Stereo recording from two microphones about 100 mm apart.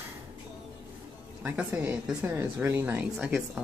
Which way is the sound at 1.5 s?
15° right (ahead or behind).